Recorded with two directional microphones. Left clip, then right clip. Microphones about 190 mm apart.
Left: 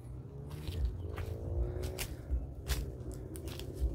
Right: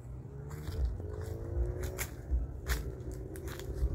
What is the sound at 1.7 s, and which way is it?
Music, 15° right (ahead or behind).